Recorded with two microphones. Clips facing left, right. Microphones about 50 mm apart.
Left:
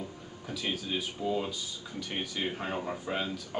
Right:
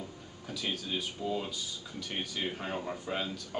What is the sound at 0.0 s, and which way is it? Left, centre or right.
Speech, centre.